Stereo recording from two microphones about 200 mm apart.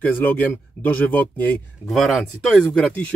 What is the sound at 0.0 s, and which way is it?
Speech, 10° left (ahead or behind).